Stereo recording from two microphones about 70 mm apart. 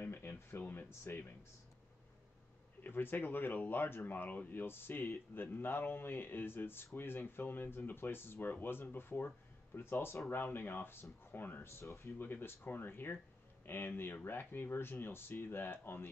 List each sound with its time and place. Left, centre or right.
0.0 s speech: left
2.8 s speech: left
12.2 s speech: left